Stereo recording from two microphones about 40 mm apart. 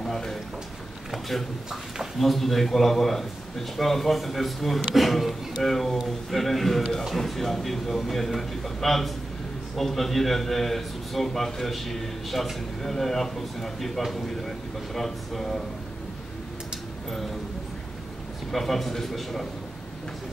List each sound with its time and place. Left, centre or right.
0.0 s a sound: centre
1.1 s speech: centre
2.1 s a man's voice: centre
18.5 s a man's voice: centre